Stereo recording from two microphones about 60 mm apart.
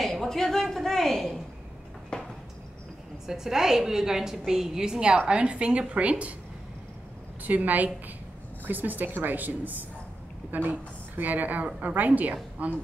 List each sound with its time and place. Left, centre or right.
0.0 s a sound: centre
3.3 s a woman's voice: centre
7.4 s a woman's voice: right